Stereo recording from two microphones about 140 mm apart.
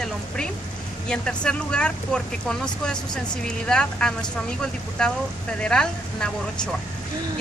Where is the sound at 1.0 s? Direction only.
5° left (ahead or behind).